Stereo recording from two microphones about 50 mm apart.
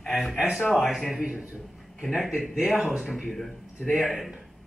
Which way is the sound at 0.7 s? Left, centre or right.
Centre.